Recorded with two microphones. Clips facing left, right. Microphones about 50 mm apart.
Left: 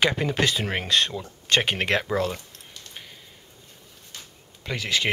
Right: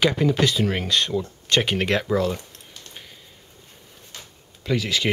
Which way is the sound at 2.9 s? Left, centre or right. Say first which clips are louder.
Left 1 dB; centre.